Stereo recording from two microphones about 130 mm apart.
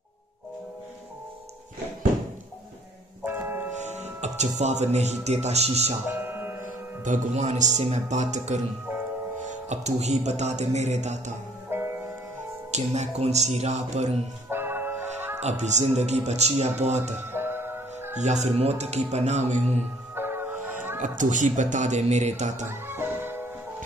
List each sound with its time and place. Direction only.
3.3 s music: 15° right (ahead or behind)
3.8 s speech: 60° right (ahead or behind)
6.1 s music: 15° right (ahead or behind)
7.1 s music: 65° right (ahead or behind)
11.7 s music: 20° right (ahead or behind)
12.7 s music: 60° right (ahead or behind)
14.5 s music: 15° right (ahead or behind)
15.4 s music: 60° right (ahead or behind)
17.2 s music: 15° right (ahead or behind)
18.1 s music: 60° right (ahead or behind)
20.2 s music: 15° right (ahead or behind)
21.0 s speech: 75° right (ahead or behind)
22.7 s music: 15° right (ahead or behind)